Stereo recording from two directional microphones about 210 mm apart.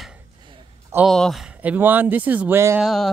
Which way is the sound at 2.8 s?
Centre (ahead or behind).